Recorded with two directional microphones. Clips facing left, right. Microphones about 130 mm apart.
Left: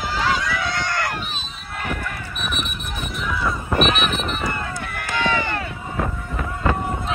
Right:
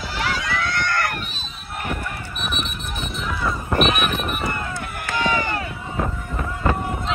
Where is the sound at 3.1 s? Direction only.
25° right (ahead or behind).